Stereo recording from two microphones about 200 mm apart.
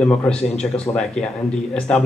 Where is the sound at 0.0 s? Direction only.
5° left (ahead or behind).